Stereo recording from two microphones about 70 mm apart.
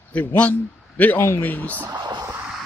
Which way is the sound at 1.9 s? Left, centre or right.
Right.